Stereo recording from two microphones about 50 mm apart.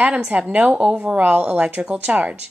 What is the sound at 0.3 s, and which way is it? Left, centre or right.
A woman's voice, right.